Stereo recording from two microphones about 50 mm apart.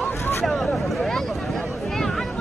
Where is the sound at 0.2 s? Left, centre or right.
Left.